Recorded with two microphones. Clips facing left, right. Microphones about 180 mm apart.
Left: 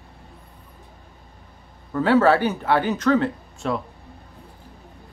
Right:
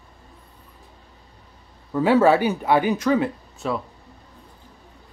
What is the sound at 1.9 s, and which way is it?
Speech, 10° right (ahead or behind).